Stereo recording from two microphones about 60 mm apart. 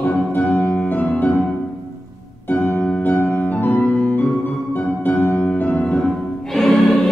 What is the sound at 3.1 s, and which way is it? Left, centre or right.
Music, left.